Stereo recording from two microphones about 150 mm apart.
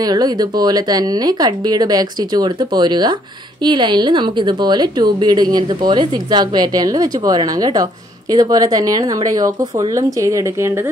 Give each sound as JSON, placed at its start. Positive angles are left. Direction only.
{"t": 0.0, "sound": "a woman's voice", "side_deg": -25}